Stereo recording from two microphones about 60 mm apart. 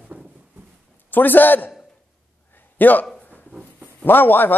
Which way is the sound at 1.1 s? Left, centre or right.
Left.